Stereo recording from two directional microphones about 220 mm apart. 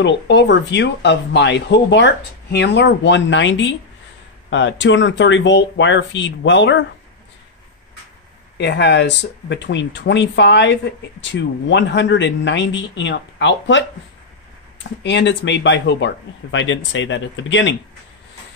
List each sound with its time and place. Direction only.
0.0 s speech: 55° left (ahead or behind)
8.5 s speech: 50° left (ahead or behind)